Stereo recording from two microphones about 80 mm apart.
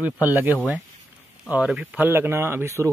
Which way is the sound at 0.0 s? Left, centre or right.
Right.